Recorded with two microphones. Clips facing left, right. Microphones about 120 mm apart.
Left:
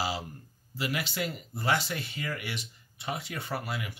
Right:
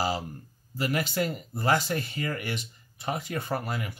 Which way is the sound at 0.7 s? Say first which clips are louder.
Right 5 dB; 45° right (ahead or behind).